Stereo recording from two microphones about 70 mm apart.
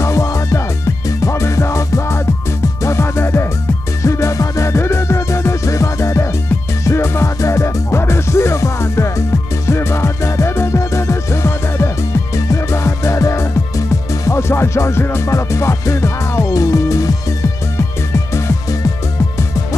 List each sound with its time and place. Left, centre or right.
0.0 s music: left
4.0 s music: left